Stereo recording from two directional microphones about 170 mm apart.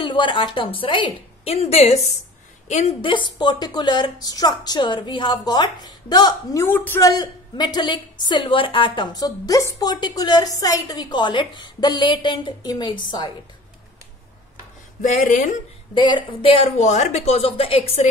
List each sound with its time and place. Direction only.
0.0 s a woman's voice: 30° left (ahead or behind)
3.0 s a woman's voice: 30° left (ahead or behind)
15.0 s speech: 50° left (ahead or behind)
15.9 s a woman's voice: 25° left (ahead or behind)